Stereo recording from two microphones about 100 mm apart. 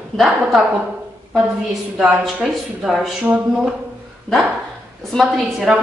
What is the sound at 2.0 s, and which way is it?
A woman's voice, 5° right (ahead or behind).